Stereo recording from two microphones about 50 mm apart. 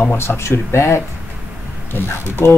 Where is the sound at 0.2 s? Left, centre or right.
Left.